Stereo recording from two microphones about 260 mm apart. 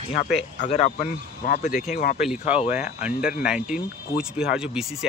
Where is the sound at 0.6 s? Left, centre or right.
Left.